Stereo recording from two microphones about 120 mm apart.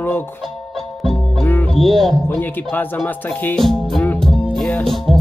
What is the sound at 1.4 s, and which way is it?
Music, 15° left (ahead or behind).